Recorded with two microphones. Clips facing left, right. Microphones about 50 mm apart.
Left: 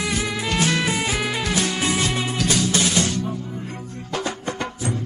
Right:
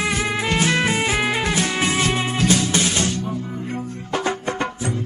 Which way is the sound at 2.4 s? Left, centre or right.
Right.